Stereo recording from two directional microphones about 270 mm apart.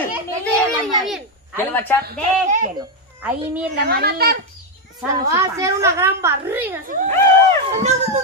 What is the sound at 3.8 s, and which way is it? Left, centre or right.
Speech, right.